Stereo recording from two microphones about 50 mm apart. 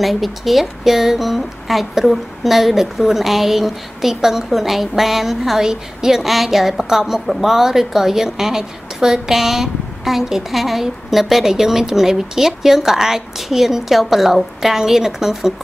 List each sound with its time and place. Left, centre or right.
0.0 s a woman's voice: centre